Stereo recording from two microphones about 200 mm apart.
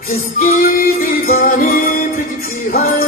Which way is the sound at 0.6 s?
45° left (ahead or behind).